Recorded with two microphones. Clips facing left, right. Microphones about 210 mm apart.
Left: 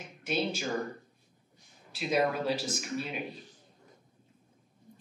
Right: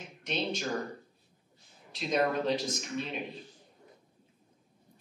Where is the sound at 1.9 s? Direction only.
5° left (ahead or behind).